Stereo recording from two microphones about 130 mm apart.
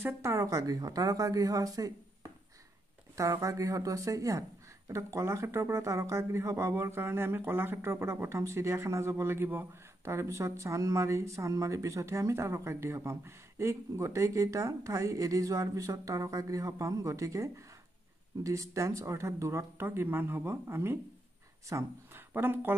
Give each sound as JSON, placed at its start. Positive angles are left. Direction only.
{"t": 0.0, "sound": "speech", "side_deg": -20}
{"t": 3.2, "sound": "speech", "side_deg": -25}